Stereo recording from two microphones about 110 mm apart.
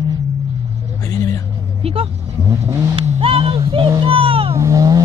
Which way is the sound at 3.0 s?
90° right.